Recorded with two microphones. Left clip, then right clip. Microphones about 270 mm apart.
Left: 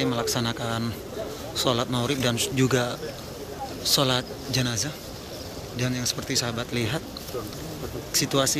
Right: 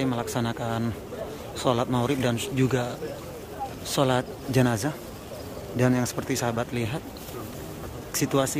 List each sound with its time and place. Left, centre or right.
0.0 s a man's voice: centre
8.1 s a man's voice: centre